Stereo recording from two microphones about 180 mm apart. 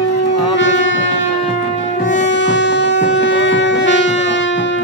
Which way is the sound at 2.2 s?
80° left.